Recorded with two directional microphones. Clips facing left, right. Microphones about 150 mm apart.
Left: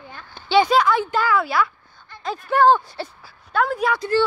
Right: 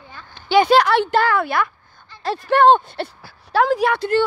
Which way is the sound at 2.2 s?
75° right (ahead or behind).